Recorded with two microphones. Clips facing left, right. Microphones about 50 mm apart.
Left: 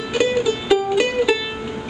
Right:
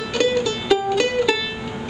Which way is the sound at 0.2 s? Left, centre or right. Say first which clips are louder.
Left 1 dB; centre.